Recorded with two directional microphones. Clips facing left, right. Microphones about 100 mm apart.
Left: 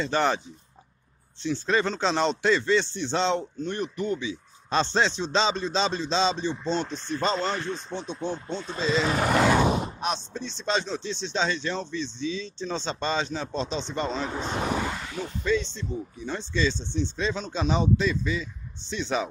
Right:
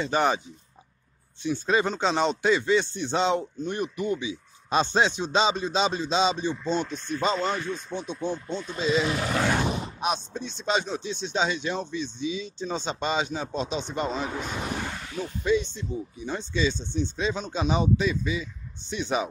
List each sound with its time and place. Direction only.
0.0 s speech: 10° right (ahead or behind)
1.4 s speech: 10° right (ahead or behind)
7.7 s speech: 25° left (ahead or behind)
9.0 s speech: 45° left (ahead or behind)
9.3 s grunt: 90° left
9.9 s speech: 10° right (ahead or behind)
15.4 s speech: 15° right (ahead or behind)